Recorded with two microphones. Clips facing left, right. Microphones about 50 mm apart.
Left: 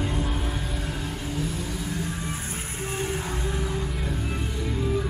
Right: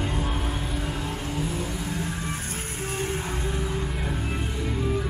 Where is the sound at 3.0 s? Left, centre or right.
Centre.